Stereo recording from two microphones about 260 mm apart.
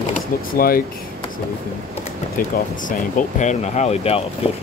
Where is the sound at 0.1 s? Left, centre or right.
Left.